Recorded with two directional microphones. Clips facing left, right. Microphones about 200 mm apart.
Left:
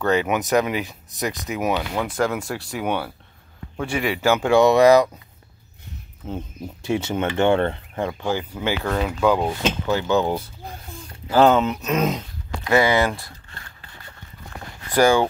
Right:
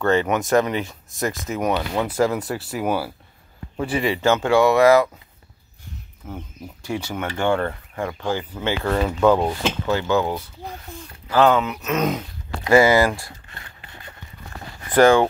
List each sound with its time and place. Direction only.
0.0 s speech: 5° left (ahead or behind)
4.3 s speech: 15° left (ahead or behind)
6.2 s speech: 25° left (ahead or behind)
8.8 s speech: centre (ahead or behind)
9.6 s speech: 15° left (ahead or behind)
11.2 s speech: 30° left (ahead or behind)
12.6 s a sound: 5° right (ahead or behind)